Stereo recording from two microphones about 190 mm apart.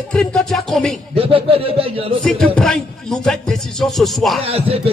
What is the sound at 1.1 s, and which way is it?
Speech, 30° right (ahead or behind).